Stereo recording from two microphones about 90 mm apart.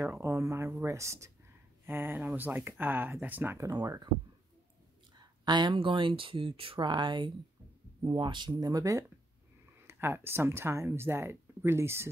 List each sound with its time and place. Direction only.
0.0 s speech: 35° right (ahead or behind)
1.9 s speech: 20° right (ahead or behind)
5.1 s speech: 55° right (ahead or behind); by 6.9 s 85° right
6.9 s speech: 60° right (ahead or behind)
8.5 s speech: 40° right (ahead or behind)
9.8 s speech: 25° right (ahead or behind)